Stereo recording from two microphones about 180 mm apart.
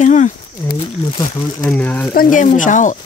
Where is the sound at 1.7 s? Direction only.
10° left (ahead or behind).